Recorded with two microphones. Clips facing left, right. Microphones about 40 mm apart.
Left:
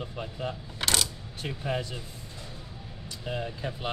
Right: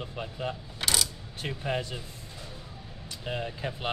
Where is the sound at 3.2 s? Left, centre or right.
Centre.